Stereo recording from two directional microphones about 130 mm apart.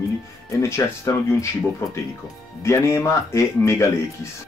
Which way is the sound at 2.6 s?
25° left (ahead or behind).